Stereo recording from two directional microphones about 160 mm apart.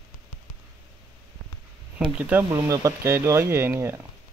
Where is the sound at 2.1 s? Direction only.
10° right (ahead or behind).